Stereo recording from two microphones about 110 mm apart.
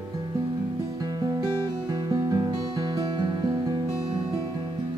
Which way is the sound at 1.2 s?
40° right (ahead or behind).